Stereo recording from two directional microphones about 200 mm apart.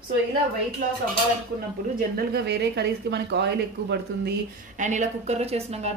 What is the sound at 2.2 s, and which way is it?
Speech, 55° right (ahead or behind).